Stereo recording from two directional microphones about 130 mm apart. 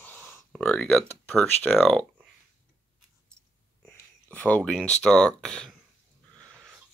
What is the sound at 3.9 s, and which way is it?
Speech, 10° left (ahead or behind).